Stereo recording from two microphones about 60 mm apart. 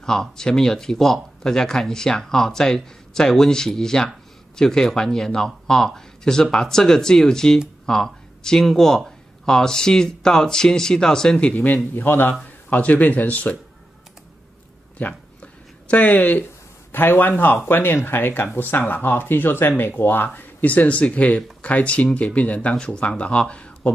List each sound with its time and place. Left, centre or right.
0.0 s speech: centre
11.9 s speech: left
15.0 s a sound: left
17.6 s speech: left
20.3 s speech: left